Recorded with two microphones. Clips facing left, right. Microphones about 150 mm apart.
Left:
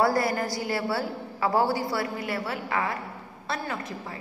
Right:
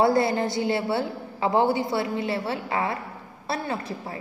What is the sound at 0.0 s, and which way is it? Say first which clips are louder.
A woman's voice: right 3 dB; 25° right (ahead or behind).